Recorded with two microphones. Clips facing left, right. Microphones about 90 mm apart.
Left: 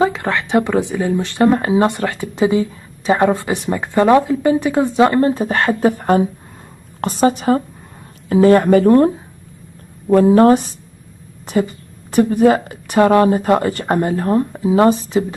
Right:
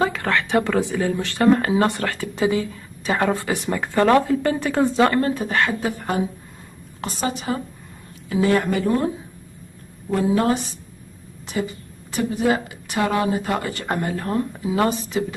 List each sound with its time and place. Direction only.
0.0 s a woman's voice: 20° left (ahead or behind)